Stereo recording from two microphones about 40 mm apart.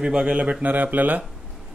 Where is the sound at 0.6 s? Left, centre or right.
Right.